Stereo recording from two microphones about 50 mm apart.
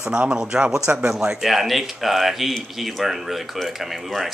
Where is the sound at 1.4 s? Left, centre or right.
Centre.